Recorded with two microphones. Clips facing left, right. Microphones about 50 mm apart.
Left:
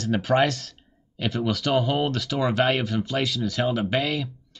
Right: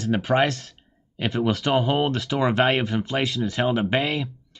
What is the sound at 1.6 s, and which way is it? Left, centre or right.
Speech, right.